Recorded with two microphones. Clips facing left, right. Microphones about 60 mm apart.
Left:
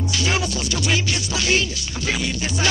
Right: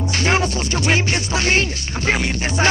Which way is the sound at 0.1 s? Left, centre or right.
Right.